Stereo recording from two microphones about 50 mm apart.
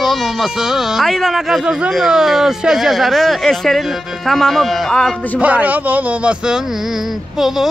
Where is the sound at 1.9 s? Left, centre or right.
Centre.